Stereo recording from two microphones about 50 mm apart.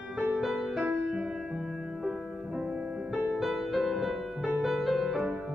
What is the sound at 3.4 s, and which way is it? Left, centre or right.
Music, centre.